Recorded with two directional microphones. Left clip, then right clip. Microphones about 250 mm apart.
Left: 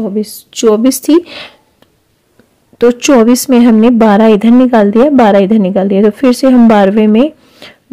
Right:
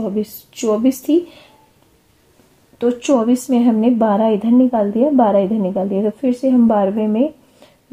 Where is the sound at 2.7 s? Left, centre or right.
Left.